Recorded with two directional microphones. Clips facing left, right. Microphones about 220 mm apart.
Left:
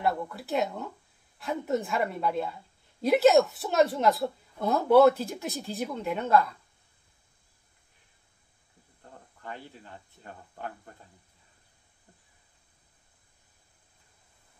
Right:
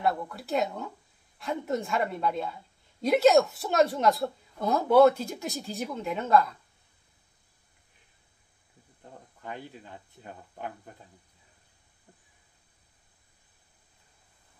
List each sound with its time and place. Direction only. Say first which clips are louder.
0.0 s a woman's voice: even; centre (ahead or behind)
9.4 s speech: right 2 dB; 15° right (ahead or behind)